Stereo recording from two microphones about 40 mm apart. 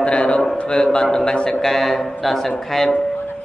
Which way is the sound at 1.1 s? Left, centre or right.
Centre.